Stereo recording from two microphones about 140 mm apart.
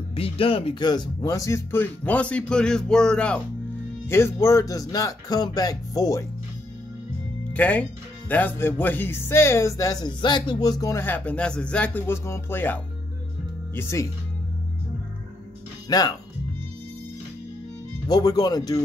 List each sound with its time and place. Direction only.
0.1 s speech: 40° left (ahead or behind); by 3.4 s 5° left (ahead or behind)
4.1 s speech: 20° left (ahead or behind)
7.5 s speech: 10° left (ahead or behind)
15.9 s speech: 25° left (ahead or behind)
18.0 s speech: 25° left (ahead or behind)